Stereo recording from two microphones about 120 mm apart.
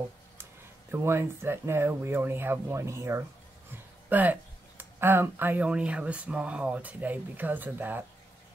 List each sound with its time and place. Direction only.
0.9 s speech: 20° right (ahead or behind)